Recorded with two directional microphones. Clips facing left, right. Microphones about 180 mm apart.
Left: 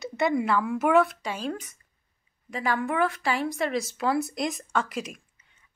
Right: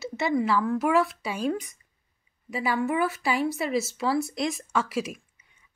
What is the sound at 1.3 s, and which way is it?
Speech, 10° right (ahead or behind).